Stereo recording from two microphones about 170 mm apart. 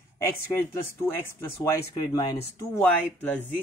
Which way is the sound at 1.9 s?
25° left (ahead or behind).